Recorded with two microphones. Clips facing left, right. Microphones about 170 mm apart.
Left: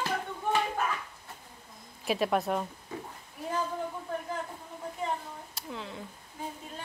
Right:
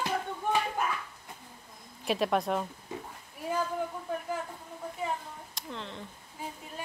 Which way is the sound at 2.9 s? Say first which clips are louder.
Even; 20° right (ahead or behind).